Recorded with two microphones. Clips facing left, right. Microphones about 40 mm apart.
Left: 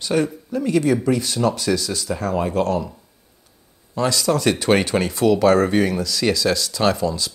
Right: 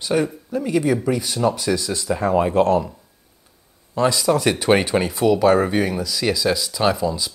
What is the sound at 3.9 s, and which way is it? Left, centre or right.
Speech, centre.